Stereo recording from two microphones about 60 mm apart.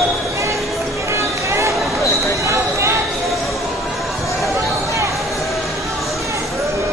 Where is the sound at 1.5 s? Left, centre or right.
Right.